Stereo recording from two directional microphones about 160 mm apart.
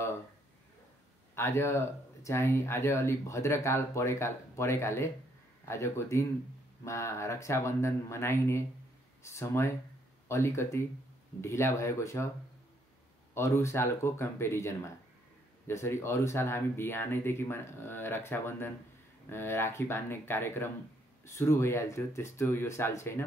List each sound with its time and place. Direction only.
1.3 s speech: 15° left (ahead or behind)
13.3 s speech: 15° left (ahead or behind)